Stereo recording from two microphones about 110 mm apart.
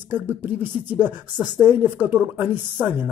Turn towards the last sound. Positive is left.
turn(degrees=-15)  # may be behind; listen again after turning